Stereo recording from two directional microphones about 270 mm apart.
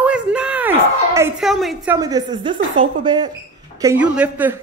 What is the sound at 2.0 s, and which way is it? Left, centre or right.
Speech, centre.